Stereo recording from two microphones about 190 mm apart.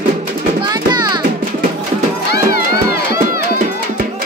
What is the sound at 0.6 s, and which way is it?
Music, 20° right (ahead or behind).